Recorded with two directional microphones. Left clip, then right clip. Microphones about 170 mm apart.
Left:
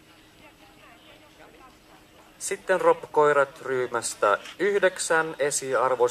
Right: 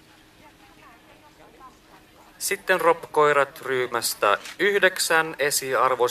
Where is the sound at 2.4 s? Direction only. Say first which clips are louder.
Right 2 dB; 25° right (ahead or behind).